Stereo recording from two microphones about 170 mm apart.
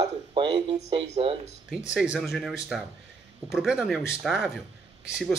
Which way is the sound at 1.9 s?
5° right (ahead or behind).